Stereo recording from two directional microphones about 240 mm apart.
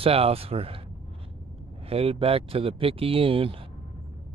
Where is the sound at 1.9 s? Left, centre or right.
Right.